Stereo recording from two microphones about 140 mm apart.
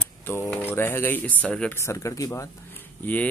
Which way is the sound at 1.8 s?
20° left (ahead or behind).